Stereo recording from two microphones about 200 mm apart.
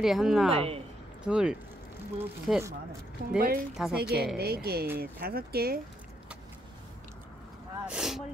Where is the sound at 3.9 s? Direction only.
50° right (ahead or behind).